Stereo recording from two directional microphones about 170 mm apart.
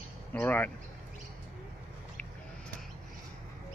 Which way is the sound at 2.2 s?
10° left (ahead or behind).